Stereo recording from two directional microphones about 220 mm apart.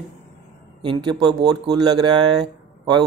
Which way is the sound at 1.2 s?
20° right (ahead or behind).